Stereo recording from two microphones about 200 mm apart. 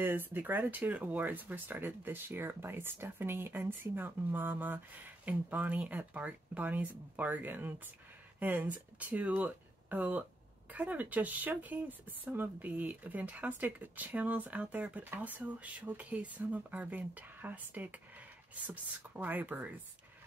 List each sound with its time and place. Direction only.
0.0 s speech: 10° right (ahead or behind)